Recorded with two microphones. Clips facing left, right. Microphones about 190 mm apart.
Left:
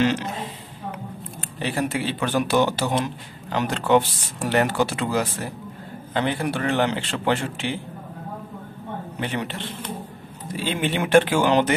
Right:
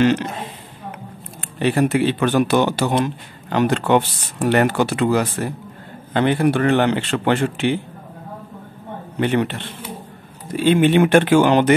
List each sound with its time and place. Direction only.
0.0 s speech: 55° right (ahead or behind)
1.6 s speech: 60° right (ahead or behind)
9.2 s speech: 60° right (ahead or behind)